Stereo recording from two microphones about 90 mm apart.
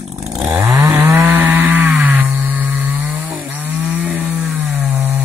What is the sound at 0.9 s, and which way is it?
Chainsaw, 20° right (ahead or behind).